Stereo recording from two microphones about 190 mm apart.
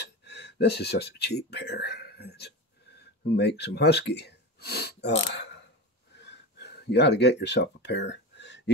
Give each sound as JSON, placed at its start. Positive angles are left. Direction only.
{"t": 0.0, "sound": "speech", "side_deg": 60}
{"t": 6.1, "sound": "gasp", "side_deg": 60}